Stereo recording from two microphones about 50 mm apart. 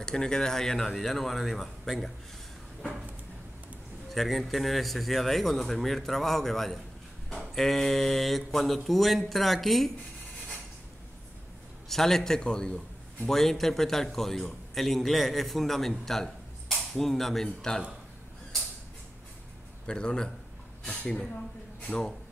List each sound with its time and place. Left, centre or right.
0.0 s a man's voice: centre
4.1 s a man's voice: centre
11.9 s a man's voice: centre
13.3 s a man's voice: centre
19.9 s a man's voice: centre